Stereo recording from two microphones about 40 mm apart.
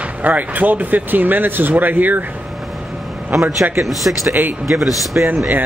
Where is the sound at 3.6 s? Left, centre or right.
Right.